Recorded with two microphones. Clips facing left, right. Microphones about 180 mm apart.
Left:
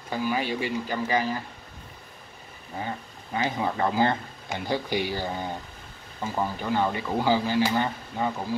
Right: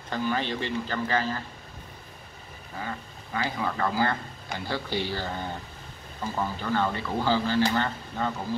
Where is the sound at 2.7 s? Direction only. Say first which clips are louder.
Left 2 dB; 25° left (ahead or behind).